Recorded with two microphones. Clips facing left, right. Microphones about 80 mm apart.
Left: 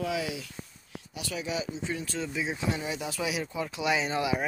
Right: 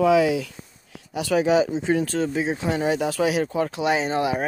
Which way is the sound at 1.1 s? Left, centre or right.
Right.